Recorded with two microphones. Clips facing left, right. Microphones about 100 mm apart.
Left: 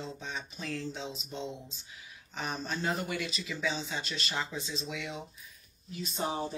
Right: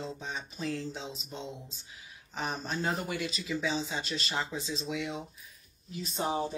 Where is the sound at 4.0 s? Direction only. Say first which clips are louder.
Right 2 dB; 35° right (ahead or behind).